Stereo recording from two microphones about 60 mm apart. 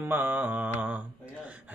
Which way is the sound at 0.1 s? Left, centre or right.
Right.